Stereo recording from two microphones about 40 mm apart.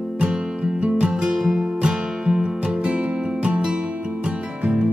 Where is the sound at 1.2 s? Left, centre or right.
Centre.